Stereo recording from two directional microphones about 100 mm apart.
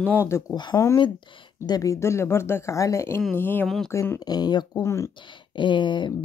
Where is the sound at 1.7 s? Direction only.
35° left (ahead or behind).